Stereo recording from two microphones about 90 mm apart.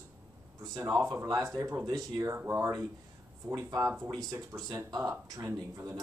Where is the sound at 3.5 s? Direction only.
40° right (ahead or behind).